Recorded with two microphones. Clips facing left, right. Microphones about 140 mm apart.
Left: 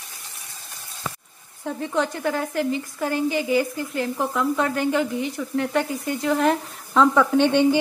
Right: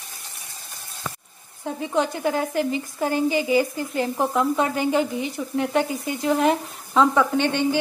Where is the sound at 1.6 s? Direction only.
10° right (ahead or behind).